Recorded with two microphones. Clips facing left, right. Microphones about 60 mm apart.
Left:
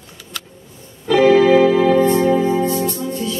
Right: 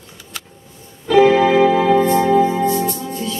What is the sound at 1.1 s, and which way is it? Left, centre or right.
Music, centre.